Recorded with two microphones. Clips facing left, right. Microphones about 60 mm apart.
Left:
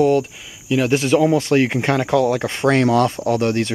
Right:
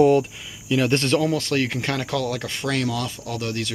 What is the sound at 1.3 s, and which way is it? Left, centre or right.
Speech, left.